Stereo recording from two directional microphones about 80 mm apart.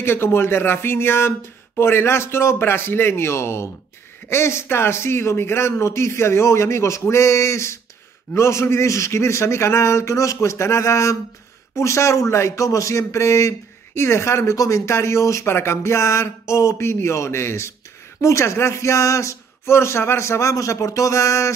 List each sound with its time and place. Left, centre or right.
0.0 s a man's voice: left